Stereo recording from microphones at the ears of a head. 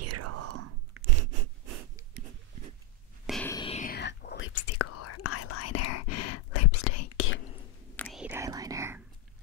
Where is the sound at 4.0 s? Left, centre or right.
Left.